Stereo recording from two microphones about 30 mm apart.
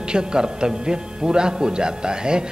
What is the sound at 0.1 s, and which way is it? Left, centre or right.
Speech, right.